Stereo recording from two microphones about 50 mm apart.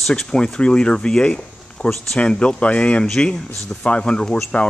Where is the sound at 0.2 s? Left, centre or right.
Centre.